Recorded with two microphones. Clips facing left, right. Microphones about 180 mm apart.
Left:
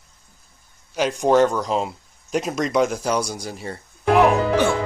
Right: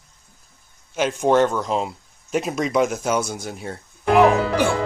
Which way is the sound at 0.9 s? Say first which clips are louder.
Even; centre (ahead or behind).